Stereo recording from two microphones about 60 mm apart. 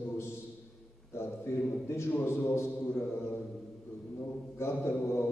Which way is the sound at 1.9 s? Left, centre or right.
Left.